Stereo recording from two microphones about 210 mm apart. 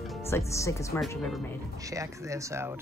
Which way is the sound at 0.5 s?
15° left (ahead or behind).